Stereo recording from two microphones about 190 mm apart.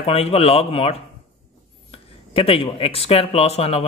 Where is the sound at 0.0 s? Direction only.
30° left (ahead or behind).